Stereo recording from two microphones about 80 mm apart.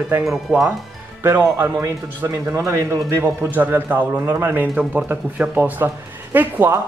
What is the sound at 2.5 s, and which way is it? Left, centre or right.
Speech, right.